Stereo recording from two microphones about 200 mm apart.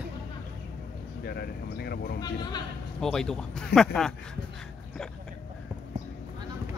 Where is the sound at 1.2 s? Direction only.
55° left (ahead or behind).